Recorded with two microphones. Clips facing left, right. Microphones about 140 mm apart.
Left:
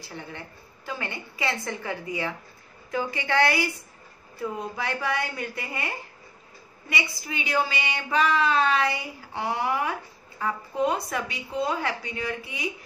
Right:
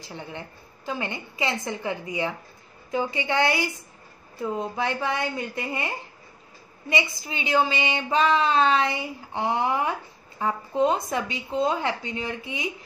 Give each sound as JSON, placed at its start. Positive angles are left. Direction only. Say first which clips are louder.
{"t": 0.0, "sound": "a woman's voice", "louder": "right 2 dB", "side_deg": -20}